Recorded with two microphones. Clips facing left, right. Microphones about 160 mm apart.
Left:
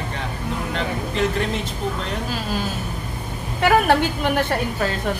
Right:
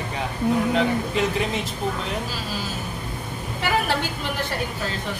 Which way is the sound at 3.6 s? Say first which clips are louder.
Left 7 dB; 55° left (ahead or behind).